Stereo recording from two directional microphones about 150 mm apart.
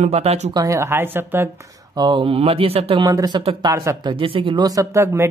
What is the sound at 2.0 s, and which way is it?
Speech, 30° right (ahead or behind).